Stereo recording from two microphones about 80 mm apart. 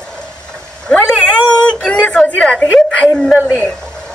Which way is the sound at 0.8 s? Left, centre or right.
Centre.